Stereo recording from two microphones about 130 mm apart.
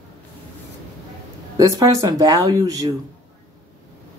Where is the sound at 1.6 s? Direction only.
25° right (ahead or behind).